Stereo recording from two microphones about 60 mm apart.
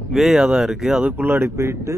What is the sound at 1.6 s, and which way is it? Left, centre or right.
Speech, right.